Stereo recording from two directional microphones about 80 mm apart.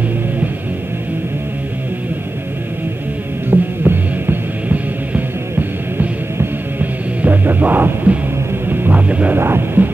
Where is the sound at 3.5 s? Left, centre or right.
Right.